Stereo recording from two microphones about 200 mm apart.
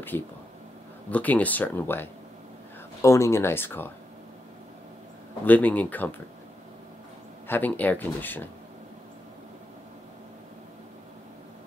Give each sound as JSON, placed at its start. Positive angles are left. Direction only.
{"t": 0.1, "sound": "speech", "side_deg": 10}
{"t": 5.4, "sound": "speech", "side_deg": 10}
{"t": 7.4, "sound": "speech", "side_deg": 10}